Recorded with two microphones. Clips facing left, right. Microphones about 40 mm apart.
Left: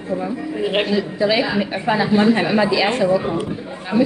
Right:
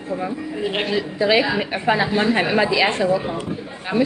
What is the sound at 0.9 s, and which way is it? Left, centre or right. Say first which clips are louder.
Speech: even; right.